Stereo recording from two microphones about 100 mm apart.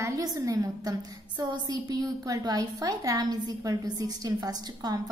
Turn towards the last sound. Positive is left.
turn(degrees=-40)  # may be behind; listen again after turning